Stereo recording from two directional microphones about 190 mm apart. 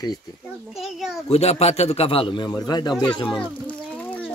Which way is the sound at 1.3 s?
35° left (ahead or behind).